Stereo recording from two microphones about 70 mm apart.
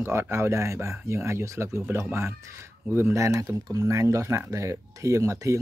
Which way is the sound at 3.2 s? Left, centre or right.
Right.